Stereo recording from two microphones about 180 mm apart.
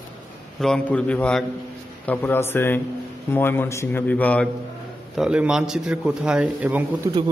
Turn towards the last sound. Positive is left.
turn(degrees=-15)  # may be behind; listen again after turning